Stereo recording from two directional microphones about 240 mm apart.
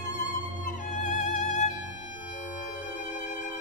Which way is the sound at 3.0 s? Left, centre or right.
Left.